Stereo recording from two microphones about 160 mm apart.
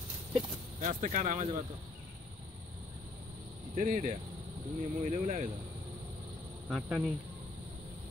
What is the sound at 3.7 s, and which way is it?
Speech, 50° right (ahead or behind).